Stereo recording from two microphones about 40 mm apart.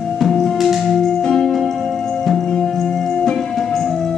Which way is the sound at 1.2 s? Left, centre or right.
Centre.